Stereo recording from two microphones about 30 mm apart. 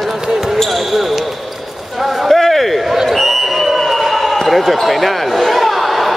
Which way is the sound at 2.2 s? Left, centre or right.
Centre.